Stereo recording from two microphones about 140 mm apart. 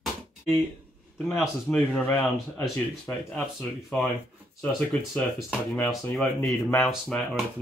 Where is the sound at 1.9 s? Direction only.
15° left (ahead or behind).